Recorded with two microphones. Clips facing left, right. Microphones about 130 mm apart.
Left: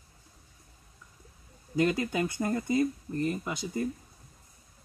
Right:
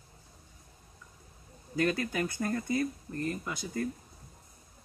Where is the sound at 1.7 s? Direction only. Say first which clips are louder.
Left 3 dB; 20° left (ahead or behind).